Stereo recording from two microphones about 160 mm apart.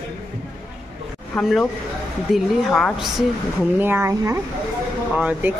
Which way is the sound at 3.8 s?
15° right (ahead or behind).